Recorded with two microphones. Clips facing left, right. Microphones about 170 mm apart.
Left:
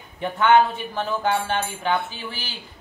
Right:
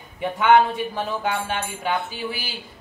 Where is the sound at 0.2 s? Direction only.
10° right (ahead or behind).